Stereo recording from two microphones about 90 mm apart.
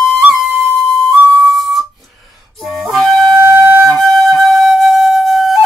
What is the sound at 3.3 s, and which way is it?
Wind instrument, 30° right (ahead or behind).